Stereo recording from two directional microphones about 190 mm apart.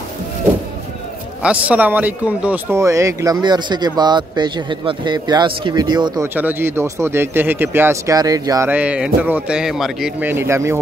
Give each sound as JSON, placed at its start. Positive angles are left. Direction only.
{"t": 1.4, "sound": "speech", "side_deg": -5}
{"t": 6.2, "sound": "speech", "side_deg": -10}
{"t": 8.6, "sound": "speech", "side_deg": -5}